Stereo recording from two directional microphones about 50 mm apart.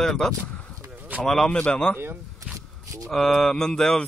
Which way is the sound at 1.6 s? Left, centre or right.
Left.